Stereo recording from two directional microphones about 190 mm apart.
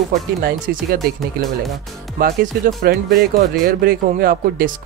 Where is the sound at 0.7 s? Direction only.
55° right (ahead or behind).